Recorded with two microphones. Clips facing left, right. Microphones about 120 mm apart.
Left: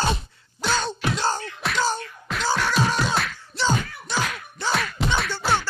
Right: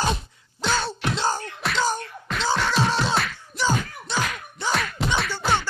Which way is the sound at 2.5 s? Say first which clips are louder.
Even; centre (ahead or behind).